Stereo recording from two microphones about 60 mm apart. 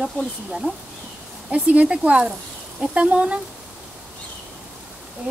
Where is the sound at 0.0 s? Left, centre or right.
Centre.